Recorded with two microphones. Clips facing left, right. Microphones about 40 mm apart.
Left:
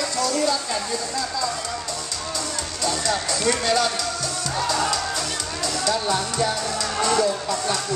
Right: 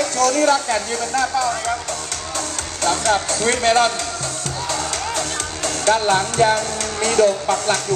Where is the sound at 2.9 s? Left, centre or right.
Right.